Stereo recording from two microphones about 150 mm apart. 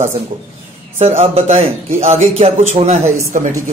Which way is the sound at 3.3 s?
60° right (ahead or behind).